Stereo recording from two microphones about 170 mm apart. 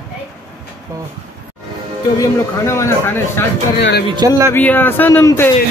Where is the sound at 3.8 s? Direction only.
80° left.